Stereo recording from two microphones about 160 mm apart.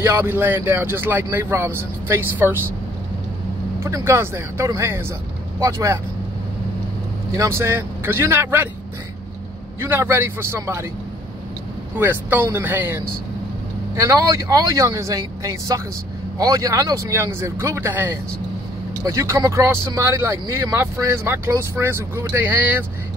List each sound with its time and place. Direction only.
0.0 s speech: 15° right (ahead or behind)
3.8 s speech: 15° right (ahead or behind)
7.3 s speech: 15° right (ahead or behind)
9.8 s speech: 15° right (ahead or behind)
12.0 s speech: 10° right (ahead or behind)